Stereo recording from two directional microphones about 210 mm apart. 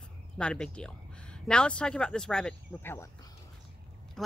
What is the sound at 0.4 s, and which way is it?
Speech, 5° left (ahead or behind).